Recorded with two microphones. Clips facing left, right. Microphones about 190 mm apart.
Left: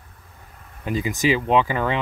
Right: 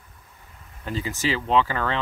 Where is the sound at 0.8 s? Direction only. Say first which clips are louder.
Left 5 dB; 15° left (ahead or behind).